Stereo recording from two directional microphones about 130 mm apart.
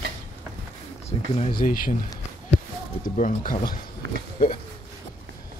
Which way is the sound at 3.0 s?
85° left.